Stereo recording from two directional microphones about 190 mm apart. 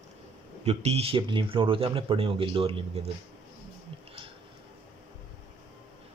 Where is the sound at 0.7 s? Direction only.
35° right (ahead or behind).